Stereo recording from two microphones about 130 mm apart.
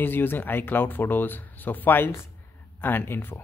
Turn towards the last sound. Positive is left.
turn(degrees=15)  # may be behind; listen again after turning